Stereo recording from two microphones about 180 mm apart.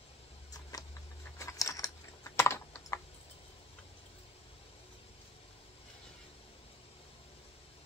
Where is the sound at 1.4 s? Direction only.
15° left (ahead or behind).